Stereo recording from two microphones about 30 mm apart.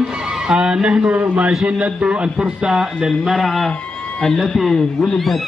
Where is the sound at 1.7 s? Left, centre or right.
Right.